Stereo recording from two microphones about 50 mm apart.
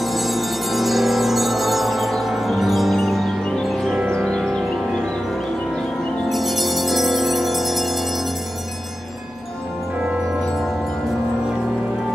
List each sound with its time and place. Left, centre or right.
0.0 s music: centre
3.6 s tubular bells: centre
4.1 s music: centre
6.2 s jingle bell: centre